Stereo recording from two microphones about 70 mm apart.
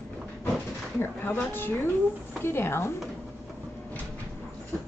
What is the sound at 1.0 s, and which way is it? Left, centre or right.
A woman's voice, left.